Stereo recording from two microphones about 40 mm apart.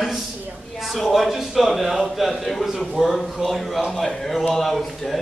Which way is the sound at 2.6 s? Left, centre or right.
Centre.